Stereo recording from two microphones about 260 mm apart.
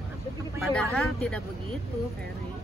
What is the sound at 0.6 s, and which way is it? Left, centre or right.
Speech, centre.